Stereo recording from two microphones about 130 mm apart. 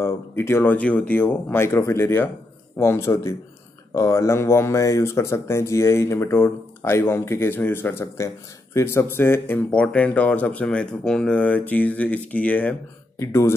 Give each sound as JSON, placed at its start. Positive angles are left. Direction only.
{"t": 0.0, "sound": "speech", "side_deg": 20}